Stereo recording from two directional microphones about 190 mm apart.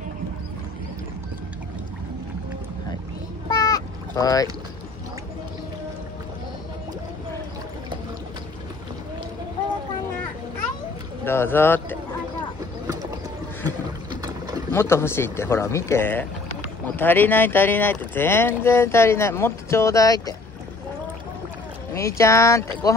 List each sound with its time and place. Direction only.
3.4 s a sound: 20° left (ahead or behind)
11.2 s speech: 10° left (ahead or behind)
14.7 s speech: 15° left (ahead or behind)
21.9 s speech: 15° left (ahead or behind)